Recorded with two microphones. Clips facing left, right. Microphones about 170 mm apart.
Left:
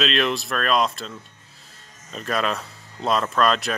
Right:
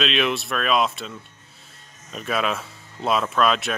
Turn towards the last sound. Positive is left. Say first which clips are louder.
# even
turn(degrees=0)  # may be behind; listen again after turning